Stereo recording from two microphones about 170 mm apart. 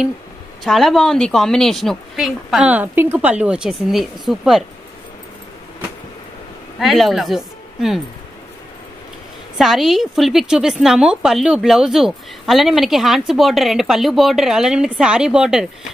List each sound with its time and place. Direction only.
0.7 s a woman's voice: centre (ahead or behind)
6.8 s speech: centre (ahead or behind)
9.6 s a woman's voice: centre (ahead or behind)